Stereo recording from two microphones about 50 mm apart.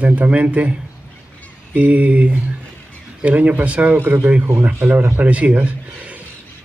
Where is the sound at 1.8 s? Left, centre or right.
Right.